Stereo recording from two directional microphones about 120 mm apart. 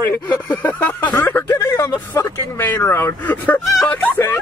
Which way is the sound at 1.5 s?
25° left (ahead or behind).